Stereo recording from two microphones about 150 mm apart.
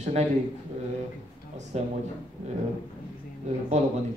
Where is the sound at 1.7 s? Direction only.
45° right (ahead or behind).